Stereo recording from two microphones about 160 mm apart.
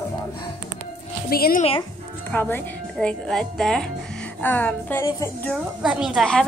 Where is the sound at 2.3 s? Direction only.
15° left (ahead or behind).